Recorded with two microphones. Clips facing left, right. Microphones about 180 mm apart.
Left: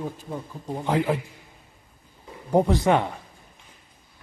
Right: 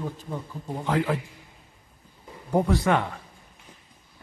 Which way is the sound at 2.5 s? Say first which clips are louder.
Left 3 dB; 20° left (ahead or behind).